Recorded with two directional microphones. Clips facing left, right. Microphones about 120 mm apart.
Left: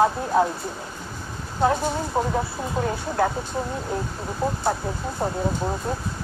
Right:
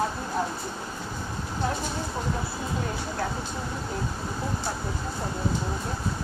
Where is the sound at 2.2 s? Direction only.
50° left (ahead or behind).